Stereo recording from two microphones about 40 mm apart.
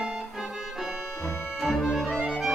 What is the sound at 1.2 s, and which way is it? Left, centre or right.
Accordion, left.